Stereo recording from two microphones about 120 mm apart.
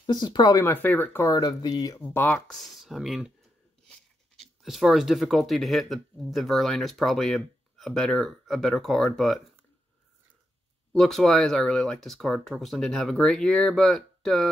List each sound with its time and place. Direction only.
0.0 s speech: 35° left (ahead or behind)
0.7 s speech: 15° left (ahead or behind)
1.2 s speech: 30° left (ahead or behind)
2.0 s speech: 15° left (ahead or behind)
2.4 s speech: centre (ahead or behind)
4.4 s speech: centre (ahead or behind)
10.9 s speech: centre (ahead or behind)